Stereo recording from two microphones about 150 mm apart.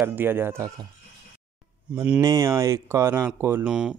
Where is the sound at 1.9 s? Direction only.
15° right (ahead or behind).